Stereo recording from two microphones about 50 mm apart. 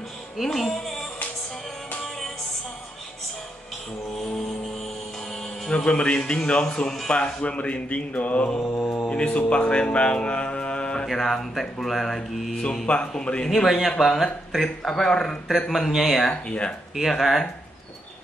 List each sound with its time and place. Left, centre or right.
0.4 s speech: centre
5.7 s speech: left
7.4 s speech: left
9.5 s music: left
11.1 s speech: centre
12.8 s speech: left
13.7 s speech: centre
16.2 s speech: left
17.1 s speech: centre